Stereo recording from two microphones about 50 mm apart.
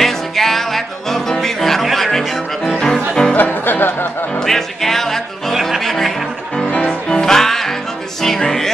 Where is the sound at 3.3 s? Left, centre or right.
Left.